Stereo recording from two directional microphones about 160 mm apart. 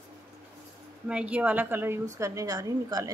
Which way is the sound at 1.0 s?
5° right (ahead or behind).